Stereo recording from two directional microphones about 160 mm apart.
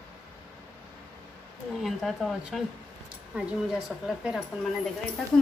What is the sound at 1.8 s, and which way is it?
Speech, centre (ahead or behind).